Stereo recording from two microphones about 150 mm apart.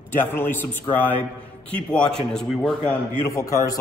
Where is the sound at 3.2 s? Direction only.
20° left (ahead or behind).